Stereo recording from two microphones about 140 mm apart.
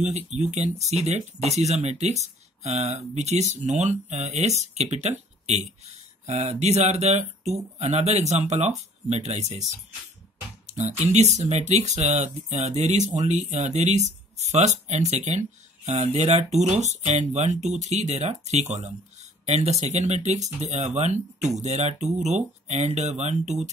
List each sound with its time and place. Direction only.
0.0 s speech: 55° right (ahead or behind)
10.7 s speech: 50° right (ahead or behind)